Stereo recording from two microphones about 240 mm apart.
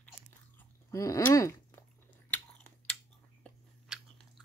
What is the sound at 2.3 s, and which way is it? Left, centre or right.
Chewing, centre.